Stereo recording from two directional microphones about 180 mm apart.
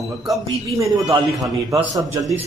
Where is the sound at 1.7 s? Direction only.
20° right (ahead or behind).